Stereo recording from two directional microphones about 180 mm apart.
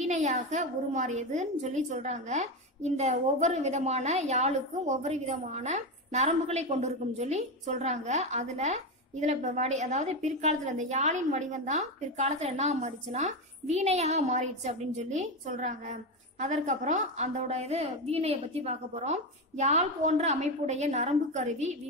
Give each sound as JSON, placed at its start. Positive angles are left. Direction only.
{"t": 0.0, "sound": "a woman's voice", "side_deg": -40}